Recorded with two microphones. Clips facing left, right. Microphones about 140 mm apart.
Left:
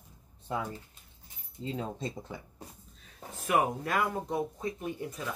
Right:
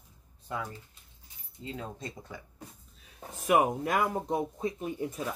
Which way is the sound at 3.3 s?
15° right (ahead or behind).